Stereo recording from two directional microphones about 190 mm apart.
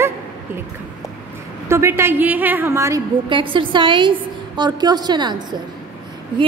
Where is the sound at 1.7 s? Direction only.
15° right (ahead or behind).